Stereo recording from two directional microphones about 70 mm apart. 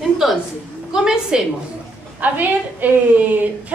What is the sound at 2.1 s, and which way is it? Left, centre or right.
A woman's voice, right.